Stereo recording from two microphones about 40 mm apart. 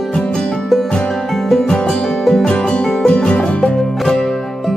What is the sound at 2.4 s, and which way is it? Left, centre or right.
Music, left.